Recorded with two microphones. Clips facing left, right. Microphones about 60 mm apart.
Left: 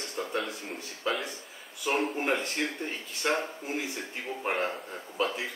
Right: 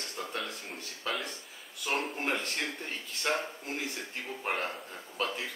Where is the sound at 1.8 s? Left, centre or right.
Centre.